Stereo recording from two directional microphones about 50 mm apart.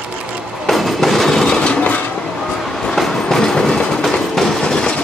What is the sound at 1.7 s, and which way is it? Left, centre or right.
Vehicle, left.